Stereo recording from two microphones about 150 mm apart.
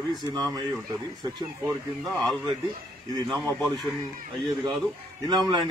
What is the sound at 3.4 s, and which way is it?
Speech, centre (ahead or behind).